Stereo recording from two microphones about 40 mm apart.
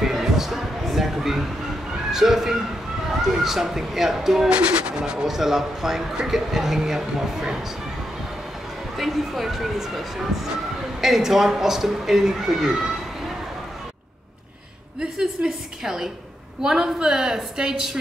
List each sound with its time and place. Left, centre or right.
0.0 s a sound: centre
2.1 s speech: centre
4.5 s speech: right
4.9 s speech: centre
8.9 s speech: centre
15.1 s speech: centre